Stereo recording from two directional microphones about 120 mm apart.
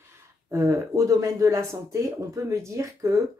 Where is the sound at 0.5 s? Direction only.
25° right (ahead or behind).